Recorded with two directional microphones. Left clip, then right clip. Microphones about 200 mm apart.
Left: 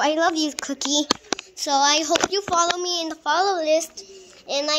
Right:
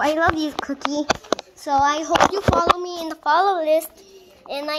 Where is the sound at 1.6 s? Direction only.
25° left (ahead or behind).